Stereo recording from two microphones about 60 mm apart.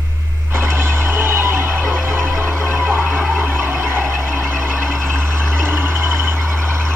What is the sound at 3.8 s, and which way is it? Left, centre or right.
Vehicle, right.